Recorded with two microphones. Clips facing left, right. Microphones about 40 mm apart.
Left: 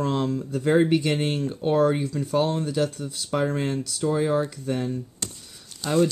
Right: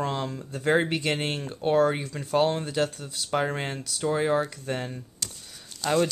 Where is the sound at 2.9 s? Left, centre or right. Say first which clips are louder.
Left 5 dB; centre.